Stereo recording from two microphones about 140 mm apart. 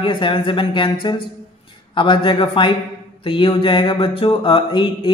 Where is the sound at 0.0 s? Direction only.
35° left (ahead or behind).